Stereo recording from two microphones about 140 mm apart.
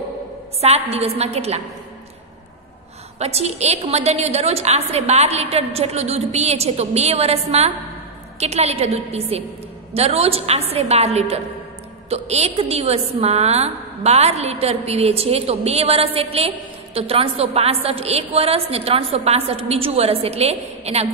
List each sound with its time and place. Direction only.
0.6 s a woman's voice: 45° right (ahead or behind)
3.2 s a woman's voice: 50° right (ahead or behind)